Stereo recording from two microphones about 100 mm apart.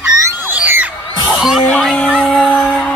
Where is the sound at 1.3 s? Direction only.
5° right (ahead or behind).